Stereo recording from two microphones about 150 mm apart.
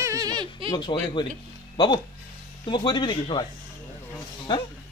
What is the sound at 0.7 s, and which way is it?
Speech, 30° left (ahead or behind).